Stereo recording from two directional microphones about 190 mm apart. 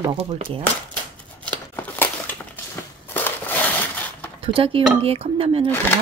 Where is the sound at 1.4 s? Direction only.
10° left (ahead or behind).